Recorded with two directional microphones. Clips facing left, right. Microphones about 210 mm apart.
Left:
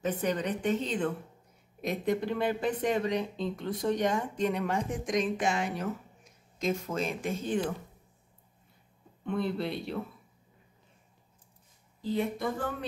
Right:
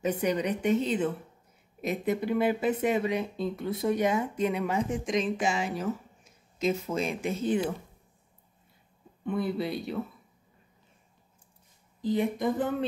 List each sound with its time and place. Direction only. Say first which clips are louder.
0.0 s speech: right 3 dB; 10° right (ahead or behind)
9.2 s speech: right 2 dB; 5° right (ahead or behind)
12.0 s speech: right 3 dB; 15° right (ahead or behind)